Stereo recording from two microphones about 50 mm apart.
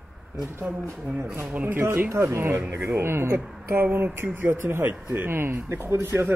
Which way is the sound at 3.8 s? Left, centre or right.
Right.